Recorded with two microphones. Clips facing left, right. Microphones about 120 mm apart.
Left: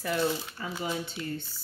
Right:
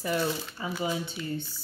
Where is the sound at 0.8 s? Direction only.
15° right (ahead or behind).